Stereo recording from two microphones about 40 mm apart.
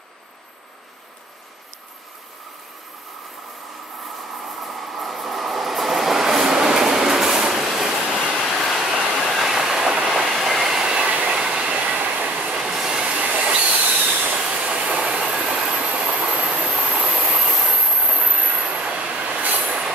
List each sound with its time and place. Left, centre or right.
4.0 s train: centre
8.8 s a sound: centre
9.2 s train: centre
10.3 s train: centre
11.7 s train: right
12.4 s train: centre; by 14.3 s right
14.3 s train: right
15.8 s train: right
16.6 s vehicle: centre
17.4 s train: centre
17.7 s train: right
18.6 s train: right